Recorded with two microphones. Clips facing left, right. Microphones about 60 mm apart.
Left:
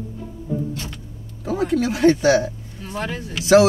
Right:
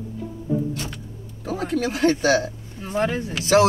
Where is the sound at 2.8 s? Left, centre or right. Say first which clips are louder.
Right 5 dB; right.